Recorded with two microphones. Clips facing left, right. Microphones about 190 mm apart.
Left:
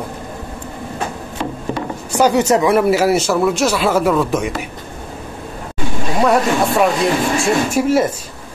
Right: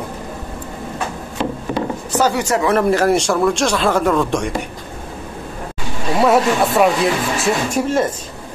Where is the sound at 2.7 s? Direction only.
5° left (ahead or behind).